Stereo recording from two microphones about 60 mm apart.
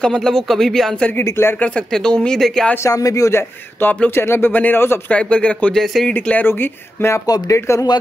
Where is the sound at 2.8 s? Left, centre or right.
Left.